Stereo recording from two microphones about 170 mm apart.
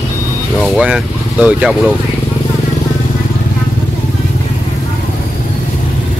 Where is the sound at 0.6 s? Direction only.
5° right (ahead or behind).